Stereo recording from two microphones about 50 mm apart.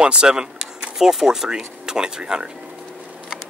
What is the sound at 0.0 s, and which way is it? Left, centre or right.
Speech, centre.